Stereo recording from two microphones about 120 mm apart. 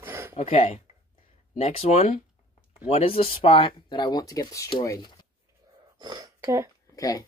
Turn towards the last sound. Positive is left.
turn(degrees=30)  # may be behind; listen again after turning